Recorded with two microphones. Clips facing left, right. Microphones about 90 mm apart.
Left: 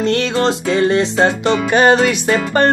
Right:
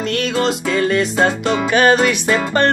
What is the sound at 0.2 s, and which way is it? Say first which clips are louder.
Music: left 2 dB; 25° left (ahead or behind).